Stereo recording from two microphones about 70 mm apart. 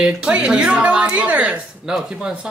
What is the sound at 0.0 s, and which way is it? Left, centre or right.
A woman's voice, centre.